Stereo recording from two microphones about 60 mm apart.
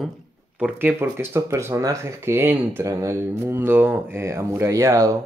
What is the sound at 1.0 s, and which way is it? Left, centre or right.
Speech, right.